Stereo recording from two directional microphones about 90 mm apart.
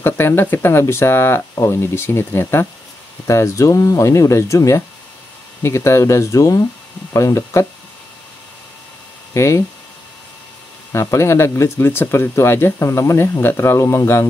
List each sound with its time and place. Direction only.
0.0 s speech: 25° left (ahead or behind)
9.3 s speech: 35° left (ahead or behind)
10.9 s speech: 35° left (ahead or behind)